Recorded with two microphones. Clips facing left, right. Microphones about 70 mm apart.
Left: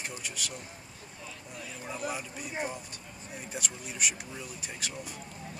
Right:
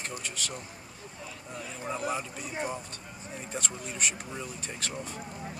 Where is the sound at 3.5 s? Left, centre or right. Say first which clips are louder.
Right 3 dB; centre.